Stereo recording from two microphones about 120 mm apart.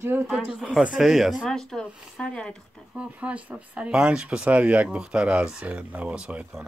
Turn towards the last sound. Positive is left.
turn(degrees=-5)  # may be behind; listen again after turning